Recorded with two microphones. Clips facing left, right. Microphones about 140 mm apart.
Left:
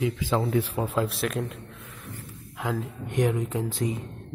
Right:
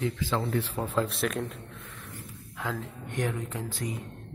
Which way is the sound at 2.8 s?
20° left (ahead or behind).